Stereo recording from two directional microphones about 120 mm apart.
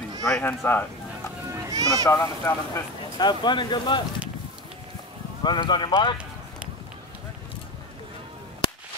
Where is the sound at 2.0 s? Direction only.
30° left (ahead or behind).